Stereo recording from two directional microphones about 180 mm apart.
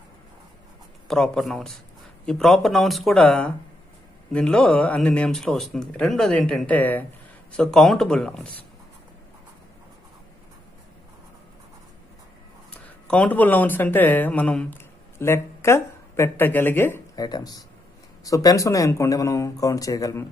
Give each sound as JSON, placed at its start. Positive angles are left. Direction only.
{"t": 1.0, "sound": "speech", "side_deg": 5}
{"t": 13.1, "sound": "speech", "side_deg": 10}